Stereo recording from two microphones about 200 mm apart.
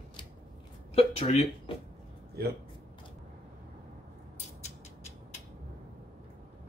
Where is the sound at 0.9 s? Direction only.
30° left (ahead or behind).